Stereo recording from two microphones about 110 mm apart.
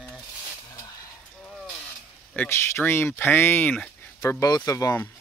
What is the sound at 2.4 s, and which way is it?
Speech, 20° left (ahead or behind).